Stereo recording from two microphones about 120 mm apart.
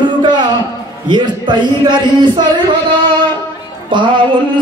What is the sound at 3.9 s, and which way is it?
Speech, 40° right (ahead or behind).